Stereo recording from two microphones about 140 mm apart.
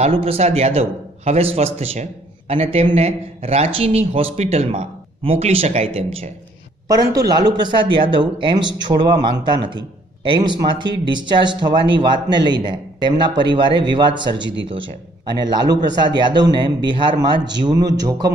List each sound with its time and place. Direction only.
0.0 s speech: 45° right (ahead or behind)
6.9 s a man's voice: 25° right (ahead or behind)